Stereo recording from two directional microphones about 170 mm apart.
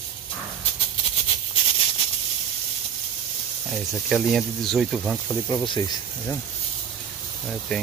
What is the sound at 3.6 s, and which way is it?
Speech, centre (ahead or behind).